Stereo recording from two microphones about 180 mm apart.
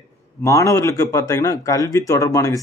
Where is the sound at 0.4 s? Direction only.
15° left (ahead or behind).